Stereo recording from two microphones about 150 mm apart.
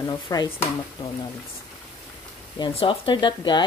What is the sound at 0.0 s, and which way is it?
Speech, 25° left (ahead or behind).